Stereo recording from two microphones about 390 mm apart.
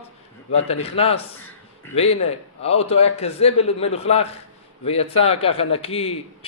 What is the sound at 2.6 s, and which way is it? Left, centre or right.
A man's voice, centre.